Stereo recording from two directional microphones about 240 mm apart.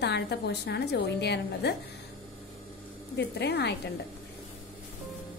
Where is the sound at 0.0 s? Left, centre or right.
Left.